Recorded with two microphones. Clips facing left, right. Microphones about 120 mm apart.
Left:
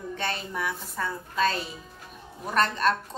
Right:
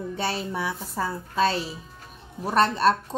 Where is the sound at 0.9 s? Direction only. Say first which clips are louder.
Right 5 dB; 30° right (ahead or behind).